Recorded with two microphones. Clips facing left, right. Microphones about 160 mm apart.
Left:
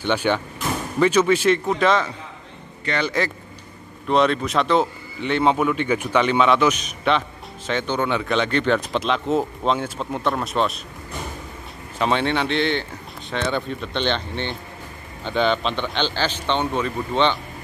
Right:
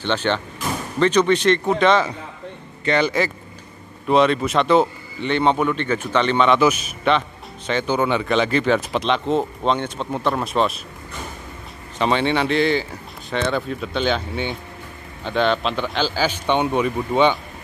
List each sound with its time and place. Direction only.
0.0 s a man's voice: 10° left (ahead or behind)
2.8 s a man's voice: 20° right (ahead or behind)
4.1 s a man's voice: centre (ahead or behind)
12.0 s a man's voice: centre (ahead or behind)